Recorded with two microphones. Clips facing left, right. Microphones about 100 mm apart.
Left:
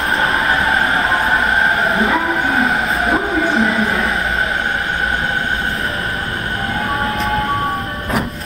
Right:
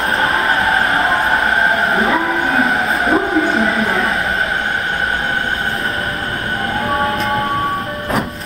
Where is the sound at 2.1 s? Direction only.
Centre (ahead or behind).